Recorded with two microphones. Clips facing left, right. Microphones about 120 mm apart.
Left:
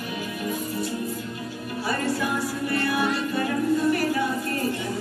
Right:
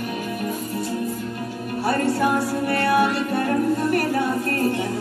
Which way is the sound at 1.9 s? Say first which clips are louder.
Right 6 dB; 60° right (ahead or behind).